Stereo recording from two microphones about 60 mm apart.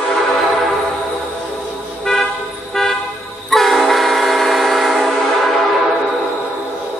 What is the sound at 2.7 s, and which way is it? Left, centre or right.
Vehicle, centre.